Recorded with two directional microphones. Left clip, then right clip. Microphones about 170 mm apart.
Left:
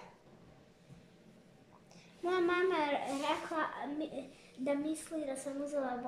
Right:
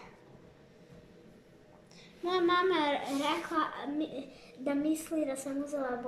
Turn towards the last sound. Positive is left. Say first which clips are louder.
# right 2 dB
turn(degrees=5)  # may be behind; listen again after turning